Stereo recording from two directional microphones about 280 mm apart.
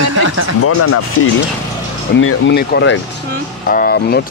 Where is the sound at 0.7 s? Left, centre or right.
Left.